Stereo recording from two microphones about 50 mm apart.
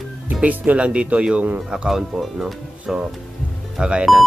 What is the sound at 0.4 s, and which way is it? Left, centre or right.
Speech, right.